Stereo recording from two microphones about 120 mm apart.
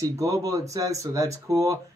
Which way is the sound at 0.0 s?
30° right (ahead or behind).